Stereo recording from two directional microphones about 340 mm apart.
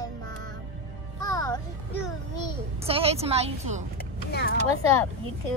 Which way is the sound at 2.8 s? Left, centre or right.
Centre.